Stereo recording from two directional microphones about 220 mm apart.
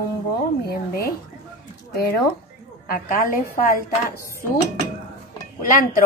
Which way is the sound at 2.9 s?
40° left (ahead or behind).